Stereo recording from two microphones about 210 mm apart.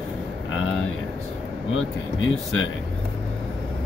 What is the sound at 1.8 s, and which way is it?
Speech, 70° left (ahead or behind).